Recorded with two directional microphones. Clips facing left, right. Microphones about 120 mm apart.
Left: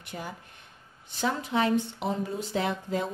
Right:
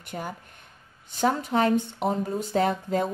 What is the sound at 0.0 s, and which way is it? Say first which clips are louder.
Speech: right 4 dB; 45° right (ahead or behind).